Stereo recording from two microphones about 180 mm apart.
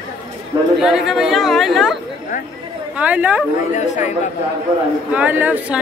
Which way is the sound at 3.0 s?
10° right (ahead or behind).